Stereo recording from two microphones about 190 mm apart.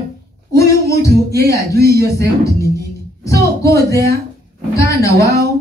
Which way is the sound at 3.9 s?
55° right (ahead or behind).